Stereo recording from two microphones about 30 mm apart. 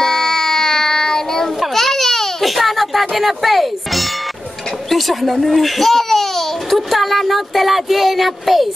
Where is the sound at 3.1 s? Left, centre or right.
Centre.